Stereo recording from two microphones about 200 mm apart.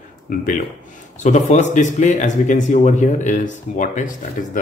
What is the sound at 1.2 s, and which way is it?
A man's voice, 35° left (ahead or behind).